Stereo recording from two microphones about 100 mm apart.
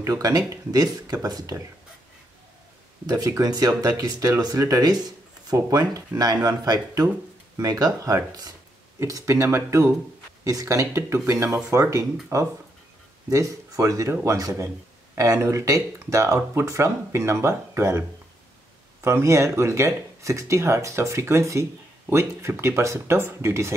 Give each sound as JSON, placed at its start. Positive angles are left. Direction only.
{"t": 0.0, "sound": "speech", "side_deg": -40}
{"t": 3.1, "sound": "speech", "side_deg": -40}
{"t": 19.0, "sound": "speech", "side_deg": -25}